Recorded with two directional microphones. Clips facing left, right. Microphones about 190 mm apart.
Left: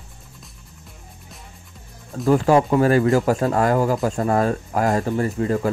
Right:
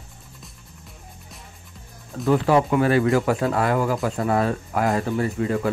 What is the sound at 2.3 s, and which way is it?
Speech, 40° left (ahead or behind).